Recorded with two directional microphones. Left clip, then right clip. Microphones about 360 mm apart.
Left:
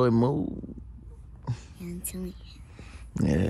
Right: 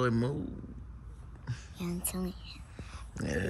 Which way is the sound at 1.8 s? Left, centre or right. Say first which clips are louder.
Right 5 dB; centre.